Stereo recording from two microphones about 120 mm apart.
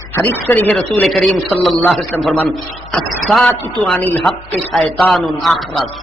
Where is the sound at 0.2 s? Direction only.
15° left (ahead or behind).